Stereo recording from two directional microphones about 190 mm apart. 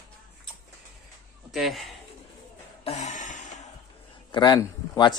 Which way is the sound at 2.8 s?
35° left (ahead or behind).